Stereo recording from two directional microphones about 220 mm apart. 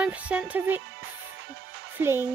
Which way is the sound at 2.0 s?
10° right (ahead or behind).